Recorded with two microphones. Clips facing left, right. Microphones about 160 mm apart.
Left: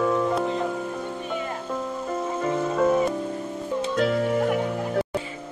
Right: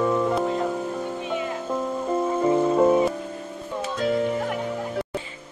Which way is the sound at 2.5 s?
25° right (ahead or behind).